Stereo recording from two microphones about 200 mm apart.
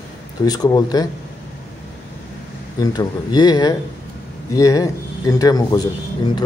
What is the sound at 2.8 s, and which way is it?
Speech, 20° left (ahead or behind).